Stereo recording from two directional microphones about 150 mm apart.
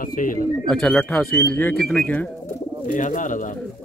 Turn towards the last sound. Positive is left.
turn(degrees=60)  # may be behind; listen again after turning